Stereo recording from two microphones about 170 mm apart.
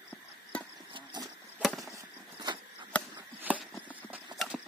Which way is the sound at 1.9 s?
25° right (ahead or behind).